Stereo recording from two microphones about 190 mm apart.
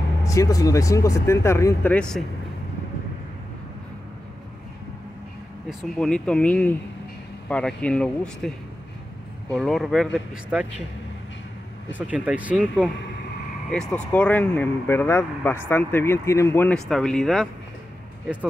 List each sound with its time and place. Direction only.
0.2 s speech: 15° left (ahead or behind)
5.7 s speech: 5° left (ahead or behind)
11.9 s speech: 5° right (ahead or behind)
13.7 s speech: 5° left (ahead or behind)